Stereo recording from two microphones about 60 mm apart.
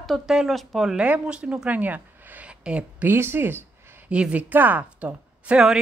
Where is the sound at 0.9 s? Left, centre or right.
Right.